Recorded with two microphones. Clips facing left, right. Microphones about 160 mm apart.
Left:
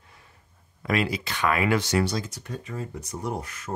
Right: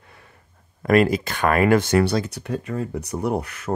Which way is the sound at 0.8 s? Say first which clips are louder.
Right 9 dB; 50° right (ahead or behind).